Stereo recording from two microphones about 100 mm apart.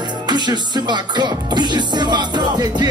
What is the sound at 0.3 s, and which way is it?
Music, 45° right (ahead or behind).